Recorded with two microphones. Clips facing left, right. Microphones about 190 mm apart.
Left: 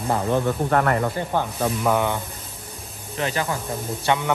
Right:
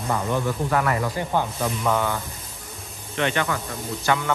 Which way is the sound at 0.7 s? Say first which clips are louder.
Left 3 dB; 50° left (ahead or behind).